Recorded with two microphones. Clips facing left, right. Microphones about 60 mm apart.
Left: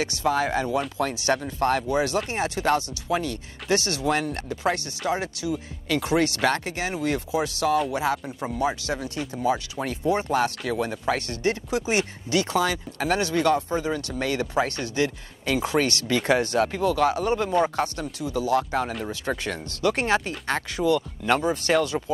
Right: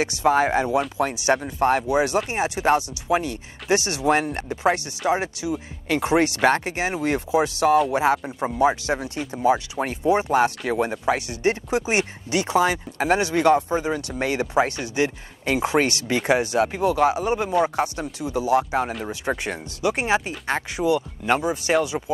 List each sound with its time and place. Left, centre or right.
0.0 s speech: right